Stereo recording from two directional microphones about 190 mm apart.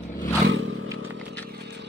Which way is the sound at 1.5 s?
60° right (ahead or behind).